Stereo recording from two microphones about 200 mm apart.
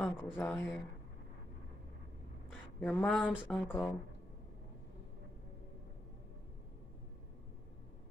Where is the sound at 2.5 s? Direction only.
5° left (ahead or behind).